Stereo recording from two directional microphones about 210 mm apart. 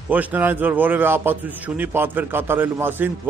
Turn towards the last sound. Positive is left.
turn(degrees=-10)  # may be behind; listen again after turning